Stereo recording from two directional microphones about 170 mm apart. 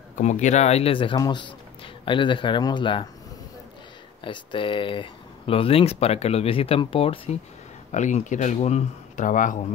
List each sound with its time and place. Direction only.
0.2 s speech: 45° left (ahead or behind); by 3.1 s 25° left (ahead or behind)
4.2 s speech: 30° left (ahead or behind)
7.9 s speech: 45° left (ahead or behind)